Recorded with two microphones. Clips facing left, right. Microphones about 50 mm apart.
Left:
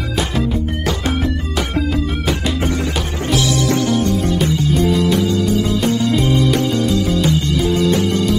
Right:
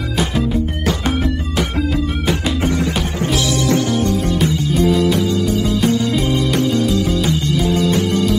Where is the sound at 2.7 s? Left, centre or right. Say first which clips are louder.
Right 2 dB; right.